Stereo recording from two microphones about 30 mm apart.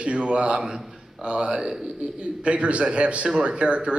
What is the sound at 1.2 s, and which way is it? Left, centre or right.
Speech, right.